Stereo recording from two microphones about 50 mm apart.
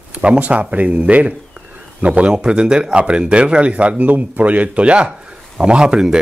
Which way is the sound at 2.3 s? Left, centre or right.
Centre.